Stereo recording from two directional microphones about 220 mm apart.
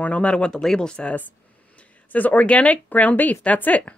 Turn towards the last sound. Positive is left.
turn(degrees=5)  # may be behind; listen again after turning